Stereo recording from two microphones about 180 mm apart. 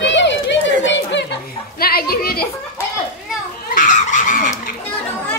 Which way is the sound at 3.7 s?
45° left (ahead or behind).